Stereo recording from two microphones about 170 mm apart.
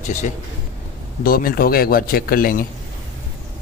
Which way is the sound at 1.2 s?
60° left (ahead or behind).